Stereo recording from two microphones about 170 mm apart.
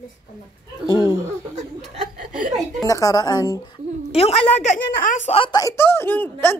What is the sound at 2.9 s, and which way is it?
Speech, 20° left (ahead or behind).